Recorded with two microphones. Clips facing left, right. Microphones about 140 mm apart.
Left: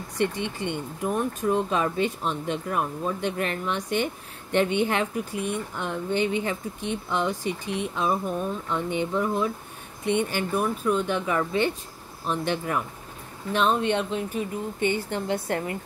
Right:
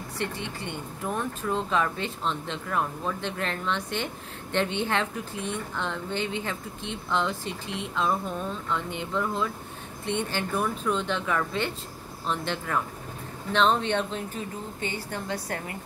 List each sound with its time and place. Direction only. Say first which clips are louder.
0.2 s speech: left 7 dB; 20° left (ahead or behind)
14.8 s a woman's voice: left 8 dB; 20° left (ahead or behind)